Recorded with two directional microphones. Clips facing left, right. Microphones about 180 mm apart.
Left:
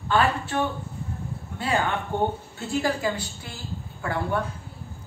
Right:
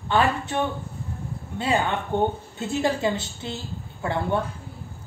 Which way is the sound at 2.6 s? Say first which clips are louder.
Right 2 dB; 20° right (ahead or behind).